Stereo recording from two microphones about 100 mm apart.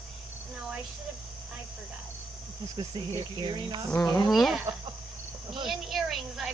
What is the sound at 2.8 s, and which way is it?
Speech, 45° right (ahead or behind).